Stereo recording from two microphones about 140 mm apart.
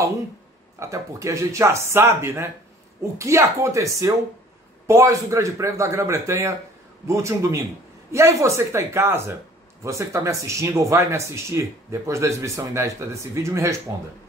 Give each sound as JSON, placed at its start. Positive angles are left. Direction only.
{"t": 0.7, "sound": "speech", "side_deg": -20}